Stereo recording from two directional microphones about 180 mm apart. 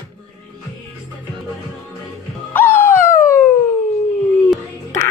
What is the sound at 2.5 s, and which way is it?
Music, 10° left (ahead or behind).